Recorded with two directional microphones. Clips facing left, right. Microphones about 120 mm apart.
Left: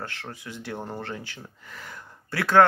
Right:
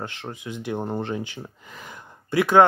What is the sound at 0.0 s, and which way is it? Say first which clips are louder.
Speech: right 4 dB; 20° right (ahead or behind).